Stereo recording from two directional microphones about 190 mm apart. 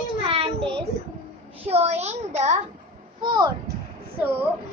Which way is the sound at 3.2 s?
20° right (ahead or behind).